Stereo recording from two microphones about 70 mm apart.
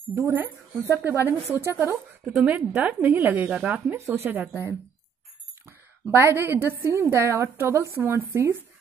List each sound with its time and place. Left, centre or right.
0.3 s speech: right
2.2 s speech: centre
2.7 s speech: right
3.9 s speech: right
4.2 s a woman's voice: right